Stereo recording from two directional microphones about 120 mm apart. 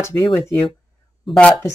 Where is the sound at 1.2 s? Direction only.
10° left (ahead or behind).